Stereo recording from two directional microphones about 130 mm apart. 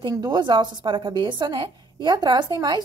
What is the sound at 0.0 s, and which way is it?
A woman's voice, 35° right (ahead or behind).